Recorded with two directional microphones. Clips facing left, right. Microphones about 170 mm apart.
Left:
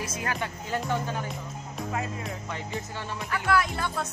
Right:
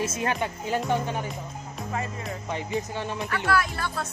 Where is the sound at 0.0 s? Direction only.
25° right (ahead or behind).